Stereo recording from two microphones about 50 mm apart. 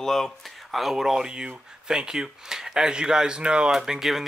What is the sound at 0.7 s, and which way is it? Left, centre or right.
Speech, centre.